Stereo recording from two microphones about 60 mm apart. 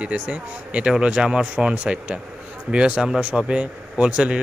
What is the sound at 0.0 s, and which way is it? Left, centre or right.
Speech, right.